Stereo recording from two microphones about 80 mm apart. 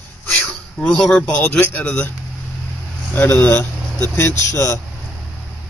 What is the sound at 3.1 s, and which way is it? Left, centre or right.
A man's voice, left.